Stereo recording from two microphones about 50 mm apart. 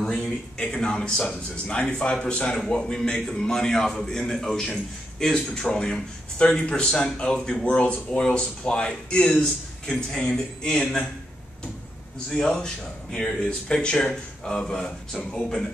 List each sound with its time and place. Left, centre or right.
0.0 s a sound: centre
0.7 s speech: centre
12.3 s speech: centre